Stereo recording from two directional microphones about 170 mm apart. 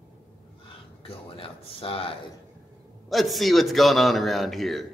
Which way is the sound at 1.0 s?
35° left (ahead or behind).